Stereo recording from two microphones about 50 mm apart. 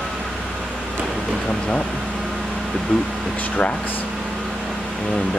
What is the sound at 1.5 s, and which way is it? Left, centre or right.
Speech, centre.